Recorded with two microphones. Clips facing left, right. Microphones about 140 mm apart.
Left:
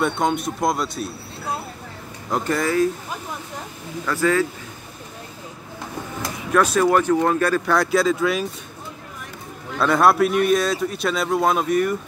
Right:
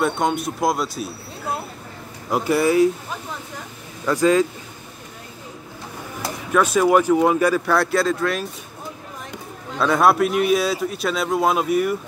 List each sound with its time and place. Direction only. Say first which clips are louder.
0.0 s a man's voice: even; centre (ahead or behind)
2.3 s speech: right 3 dB; 10° right (ahead or behind)
4.0 s speech: right 3 dB; 15° right (ahead or behind)
6.5 s a man's voice: right 1 dB; 5° right (ahead or behind)
9.8 s a man's voice: even; centre (ahead or behind)